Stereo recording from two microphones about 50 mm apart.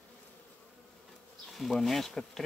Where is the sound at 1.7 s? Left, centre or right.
Centre.